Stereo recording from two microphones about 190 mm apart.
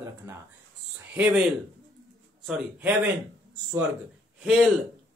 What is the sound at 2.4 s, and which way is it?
Speech, 5° right (ahead or behind).